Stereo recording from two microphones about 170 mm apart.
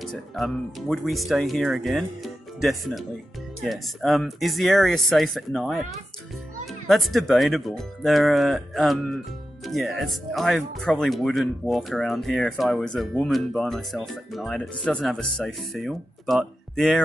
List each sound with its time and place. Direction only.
0.0 s speech: centre (ahead or behind)